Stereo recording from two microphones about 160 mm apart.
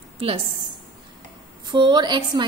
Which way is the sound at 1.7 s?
30° right (ahead or behind).